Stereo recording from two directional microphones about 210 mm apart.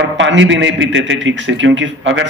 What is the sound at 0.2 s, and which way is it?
A man's voice, 60° right (ahead or behind).